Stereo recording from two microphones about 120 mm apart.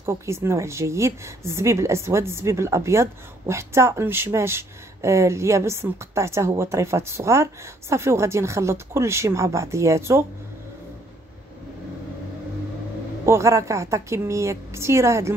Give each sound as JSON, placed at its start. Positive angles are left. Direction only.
{"t": 0.0, "sound": "a woman's voice", "side_deg": -20}
{"t": 13.2, "sound": "a woman's voice", "side_deg": -25}